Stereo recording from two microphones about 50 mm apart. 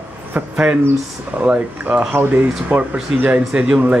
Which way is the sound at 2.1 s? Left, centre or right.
Right.